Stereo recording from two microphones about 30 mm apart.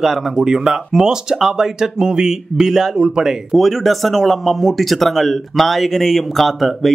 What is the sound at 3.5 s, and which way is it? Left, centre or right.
Speech, centre.